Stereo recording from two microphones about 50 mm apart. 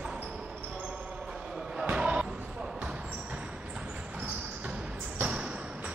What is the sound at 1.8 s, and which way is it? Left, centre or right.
Basketball bounce, right.